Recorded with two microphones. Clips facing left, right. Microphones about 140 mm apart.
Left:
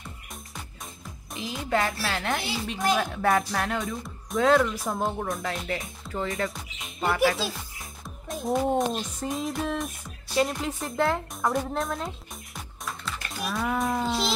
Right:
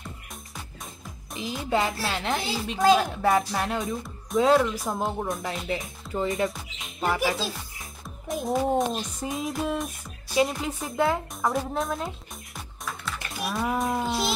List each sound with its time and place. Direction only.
1.3 s speech: centre (ahead or behind)
6.2 s speech: 25° right (ahead or behind)
6.5 s music: centre (ahead or behind)
8.5 s speech: centre (ahead or behind)
12.5 s music: centre (ahead or behind)